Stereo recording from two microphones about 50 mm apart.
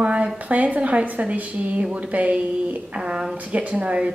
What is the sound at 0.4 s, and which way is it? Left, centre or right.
A woman's voice, right.